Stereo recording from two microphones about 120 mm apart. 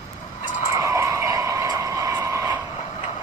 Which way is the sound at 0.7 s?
25° right (ahead or behind).